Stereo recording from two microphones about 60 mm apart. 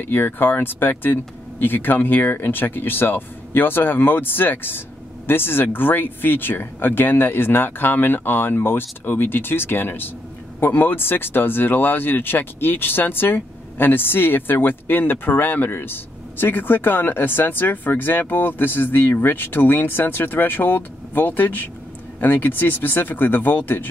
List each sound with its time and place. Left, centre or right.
0.0 s speech: left